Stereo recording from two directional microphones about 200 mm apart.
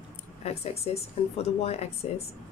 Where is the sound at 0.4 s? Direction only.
30° left (ahead or behind).